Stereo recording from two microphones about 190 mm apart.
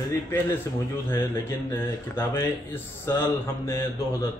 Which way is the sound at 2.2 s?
15° left (ahead or behind).